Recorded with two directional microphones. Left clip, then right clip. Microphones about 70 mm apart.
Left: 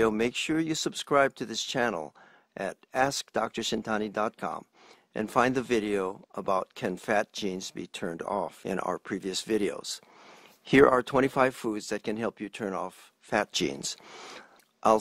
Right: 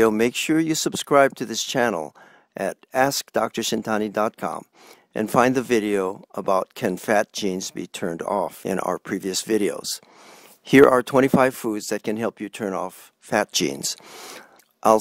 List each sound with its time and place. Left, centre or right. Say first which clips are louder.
0.0 s speech: right 7 dB; right